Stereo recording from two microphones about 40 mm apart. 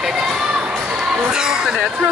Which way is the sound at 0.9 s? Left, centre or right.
Centre.